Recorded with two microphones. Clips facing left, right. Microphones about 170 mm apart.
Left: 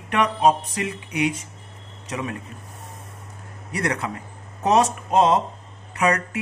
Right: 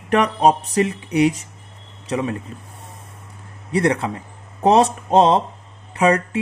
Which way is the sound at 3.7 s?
30° right (ahead or behind).